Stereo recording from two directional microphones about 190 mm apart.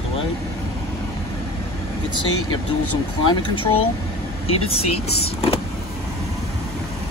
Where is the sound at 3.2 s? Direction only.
25° left (ahead or behind).